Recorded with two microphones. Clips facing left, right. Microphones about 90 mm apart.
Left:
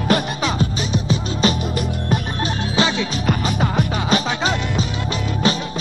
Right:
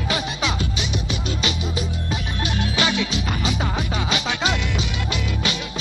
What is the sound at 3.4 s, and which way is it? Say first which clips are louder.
Music: left 4 dB; 50° left (ahead or behind).